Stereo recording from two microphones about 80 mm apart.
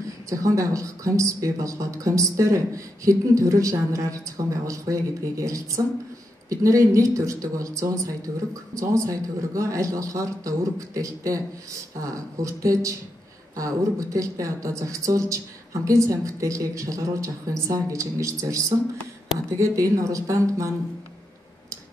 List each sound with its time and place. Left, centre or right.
0.3 s speech: right